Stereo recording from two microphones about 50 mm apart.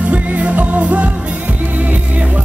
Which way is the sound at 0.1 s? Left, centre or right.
Right.